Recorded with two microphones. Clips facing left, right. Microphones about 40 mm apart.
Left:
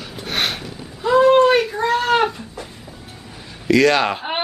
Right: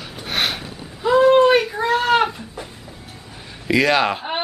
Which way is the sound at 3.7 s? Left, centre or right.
Centre.